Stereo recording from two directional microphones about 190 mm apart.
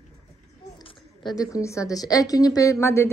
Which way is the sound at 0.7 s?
20° left (ahead or behind).